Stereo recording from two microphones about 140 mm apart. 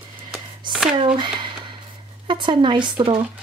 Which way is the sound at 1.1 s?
35° right (ahead or behind).